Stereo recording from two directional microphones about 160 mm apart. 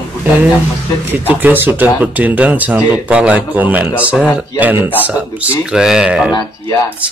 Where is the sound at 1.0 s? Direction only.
10° right (ahead or behind).